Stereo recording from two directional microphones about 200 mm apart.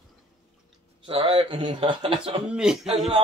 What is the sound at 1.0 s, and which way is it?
A man's voice, 25° right (ahead or behind).